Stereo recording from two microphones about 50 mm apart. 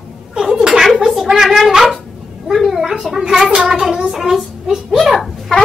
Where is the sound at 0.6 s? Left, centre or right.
Centre.